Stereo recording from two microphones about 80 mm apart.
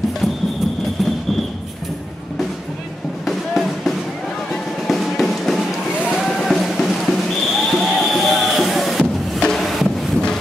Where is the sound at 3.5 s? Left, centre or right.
Centre.